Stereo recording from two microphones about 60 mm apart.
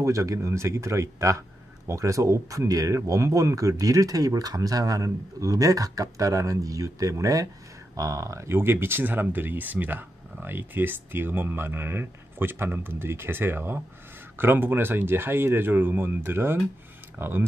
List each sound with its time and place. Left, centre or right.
0.0 s a man's voice: right